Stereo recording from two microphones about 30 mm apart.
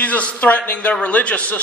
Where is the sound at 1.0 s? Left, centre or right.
Left.